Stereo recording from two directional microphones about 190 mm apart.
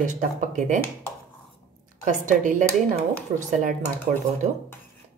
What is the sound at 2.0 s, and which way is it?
A woman's voice, 40° right (ahead or behind).